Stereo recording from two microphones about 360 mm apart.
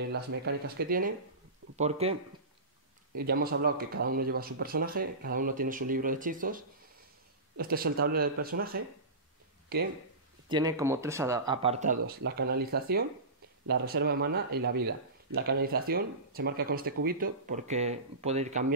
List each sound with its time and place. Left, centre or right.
0.0 s speech: right
3.2 s speech: right
10.5 s speech: centre